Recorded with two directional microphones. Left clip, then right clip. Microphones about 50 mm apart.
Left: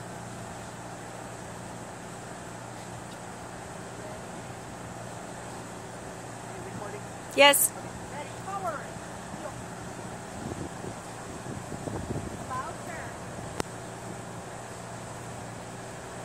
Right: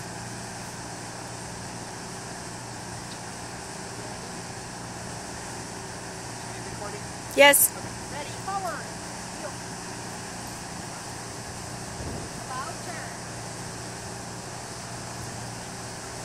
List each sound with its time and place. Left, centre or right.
7.4 s speech: centre